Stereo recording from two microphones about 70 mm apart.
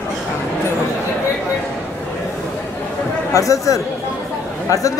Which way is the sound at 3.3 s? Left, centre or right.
Left.